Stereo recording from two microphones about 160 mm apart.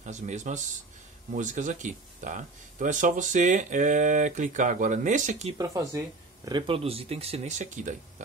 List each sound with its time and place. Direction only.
0.0 s speech: 50° right (ahead or behind)
5.6 s speech: 20° right (ahead or behind); by 7.9 s 50° right (ahead or behind)